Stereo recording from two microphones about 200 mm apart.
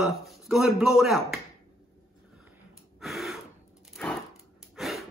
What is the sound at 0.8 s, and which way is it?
Speech, centre (ahead or behind).